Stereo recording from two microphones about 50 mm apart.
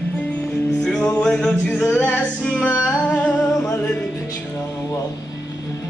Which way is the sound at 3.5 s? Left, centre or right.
Left.